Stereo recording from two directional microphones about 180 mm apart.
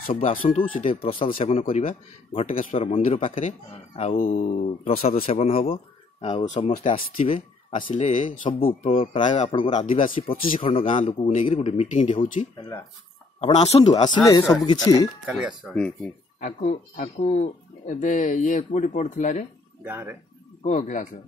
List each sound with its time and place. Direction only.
0.1 s speech: 50° left (ahead or behind)
0.6 s a man's voice: 35° left (ahead or behind)
2.7 s a man's voice: 30° left (ahead or behind)
3.0 s a man's voice: 45° left (ahead or behind)
7.2 s a man's voice: 30° left (ahead or behind)
7.7 s a man's voice: 40° left (ahead or behind)
10.1 s a man's voice: 30° left (ahead or behind)
14.0 s speech: 20° left (ahead or behind)
15.2 s speech: 5° right (ahead or behind)
15.7 s speech: 5° left (ahead or behind)
16.3 s speech: 45° left (ahead or behind)
19.8 s speech: 10° right (ahead or behind)
20.6 s speech: 45° left (ahead or behind)